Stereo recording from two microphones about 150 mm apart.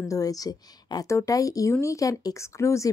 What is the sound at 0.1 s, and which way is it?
A woman's voice, 25° left (ahead or behind).